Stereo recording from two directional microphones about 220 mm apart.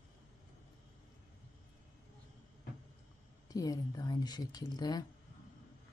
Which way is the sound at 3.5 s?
15° left (ahead or behind).